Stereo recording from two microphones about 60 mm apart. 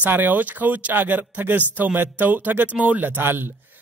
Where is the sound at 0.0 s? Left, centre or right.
Right.